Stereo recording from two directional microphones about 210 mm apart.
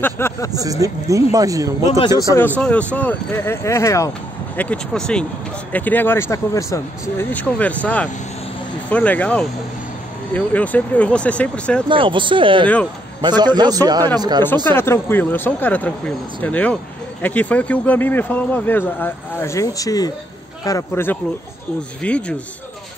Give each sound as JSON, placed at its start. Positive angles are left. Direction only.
{"t": 0.0, "sound": "speech", "side_deg": 10}
{"t": 0.5, "sound": "speech", "side_deg": -15}
{"t": 2.6, "sound": "speech", "side_deg": 5}
{"t": 11.9, "sound": "a man's voice", "side_deg": -25}
{"t": 14.4, "sound": "speech", "side_deg": 10}